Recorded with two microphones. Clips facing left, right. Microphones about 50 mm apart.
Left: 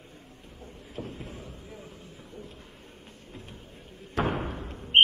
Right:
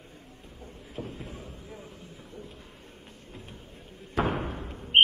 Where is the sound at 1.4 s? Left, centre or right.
Right.